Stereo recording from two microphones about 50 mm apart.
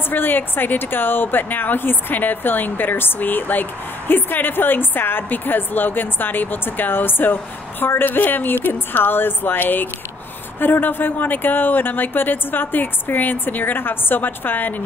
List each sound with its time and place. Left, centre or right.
0.1 s a woman's voice: left